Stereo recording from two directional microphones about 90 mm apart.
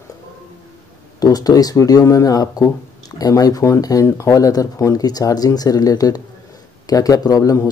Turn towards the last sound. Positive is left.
turn(degrees=40)  # may be behind; listen again after turning